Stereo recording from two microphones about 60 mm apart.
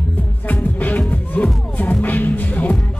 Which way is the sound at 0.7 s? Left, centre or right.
Left.